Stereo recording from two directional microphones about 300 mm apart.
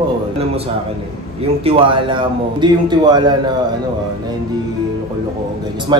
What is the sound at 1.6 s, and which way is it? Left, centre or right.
A man's voice, centre.